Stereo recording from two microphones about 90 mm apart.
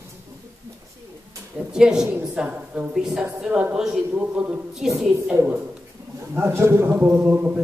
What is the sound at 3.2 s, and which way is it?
A woman's voice, 15° right (ahead or behind).